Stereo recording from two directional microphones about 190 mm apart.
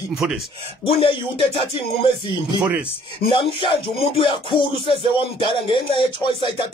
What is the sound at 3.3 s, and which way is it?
Music, 30° left (ahead or behind).